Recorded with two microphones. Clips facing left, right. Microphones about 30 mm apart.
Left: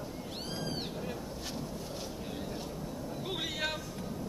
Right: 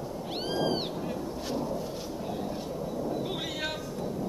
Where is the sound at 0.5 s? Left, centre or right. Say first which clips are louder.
Right 10 dB; right.